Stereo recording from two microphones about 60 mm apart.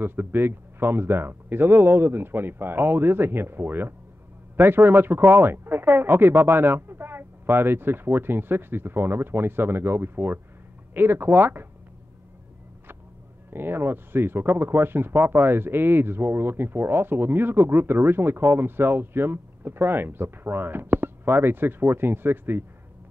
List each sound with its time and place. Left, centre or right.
0.0 s speech: right
13.5 s speech: right
18.1 s speech: right